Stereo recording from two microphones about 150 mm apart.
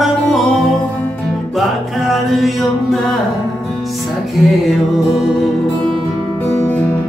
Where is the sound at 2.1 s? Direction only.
Centre (ahead or behind).